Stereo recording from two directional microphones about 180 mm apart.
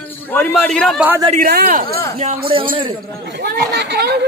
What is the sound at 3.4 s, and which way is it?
Speech, 65° right (ahead or behind).